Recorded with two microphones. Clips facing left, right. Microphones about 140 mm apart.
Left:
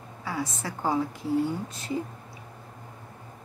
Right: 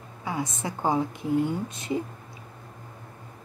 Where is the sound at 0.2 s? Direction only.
20° right (ahead or behind).